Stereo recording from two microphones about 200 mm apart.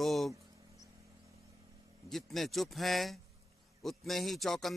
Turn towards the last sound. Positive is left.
turn(degrees=0)  # may be behind; listen again after turning